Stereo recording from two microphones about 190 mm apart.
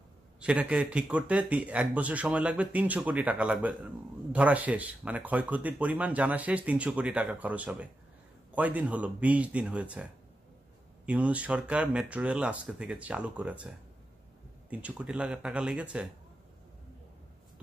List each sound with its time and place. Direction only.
0.4 s speech: 5° right (ahead or behind)
11.1 s speech: 5° right (ahead or behind)